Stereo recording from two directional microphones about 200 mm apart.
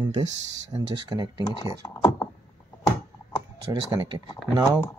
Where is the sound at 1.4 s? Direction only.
20° left (ahead or behind).